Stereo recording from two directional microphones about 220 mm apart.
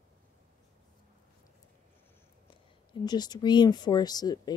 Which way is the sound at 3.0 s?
20° left (ahead or behind).